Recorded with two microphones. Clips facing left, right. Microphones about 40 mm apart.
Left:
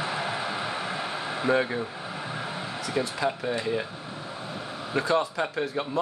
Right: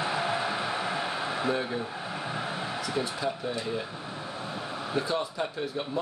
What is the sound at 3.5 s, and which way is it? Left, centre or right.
Speech, left.